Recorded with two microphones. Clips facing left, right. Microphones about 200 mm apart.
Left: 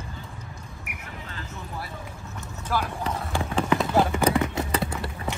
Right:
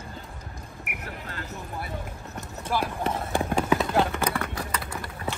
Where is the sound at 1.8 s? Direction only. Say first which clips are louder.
Right 2 dB; 55° right (ahead or behind).